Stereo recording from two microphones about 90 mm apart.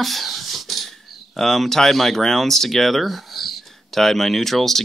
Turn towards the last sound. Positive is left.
turn(degrees=5)  # may be behind; listen again after turning